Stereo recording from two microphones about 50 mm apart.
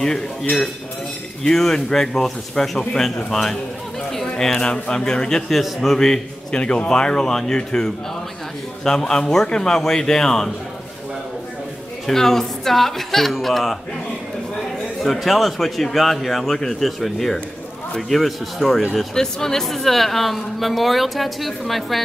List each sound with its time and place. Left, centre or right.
0.0 s a man's voice: centre
5.5 s a man's voice: centre
6.6 s a man's voice: left
12.1 s speech: centre
15.0 s speech: centre